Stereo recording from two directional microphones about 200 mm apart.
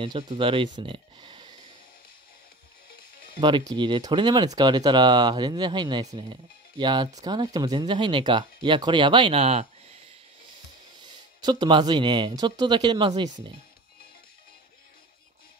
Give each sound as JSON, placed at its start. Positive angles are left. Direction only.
{"t": 0.0, "sound": "speech", "side_deg": -25}
{"t": 3.3, "sound": "speech", "side_deg": -25}
{"t": 11.0, "sound": "speech", "side_deg": -20}